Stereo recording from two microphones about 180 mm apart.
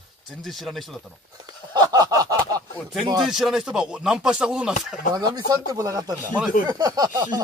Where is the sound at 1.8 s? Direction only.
20° right (ahead or behind).